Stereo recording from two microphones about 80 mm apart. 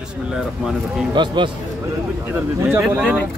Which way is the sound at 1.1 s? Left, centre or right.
Right.